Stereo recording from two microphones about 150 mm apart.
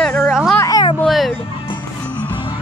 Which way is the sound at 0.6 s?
25° left (ahead or behind).